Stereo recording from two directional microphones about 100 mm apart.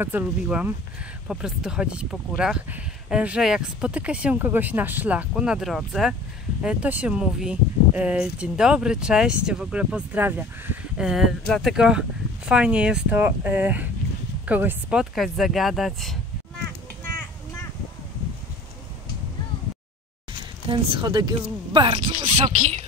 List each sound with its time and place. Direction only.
0.0 s speech: 20° right (ahead or behind)
5.3 s speech: 5° right (ahead or behind)
11.0 s speech: 5° right (ahead or behind)
11.4 s speech: 5° left (ahead or behind)
11.7 s speech: 5° right (ahead or behind)
15.0 s speech: centre (ahead or behind)
20.7 s speech: 55° right (ahead or behind)
21.7 s speech: 55° right (ahead or behind)